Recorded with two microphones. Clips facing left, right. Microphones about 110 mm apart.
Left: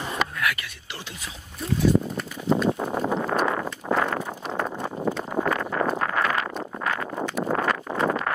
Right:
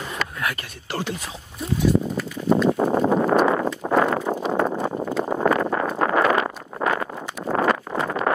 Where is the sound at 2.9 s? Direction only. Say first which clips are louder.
Right 7 dB; 50° right (ahead or behind).